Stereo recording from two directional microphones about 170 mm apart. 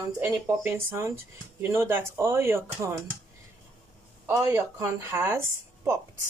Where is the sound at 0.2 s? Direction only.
15° right (ahead or behind).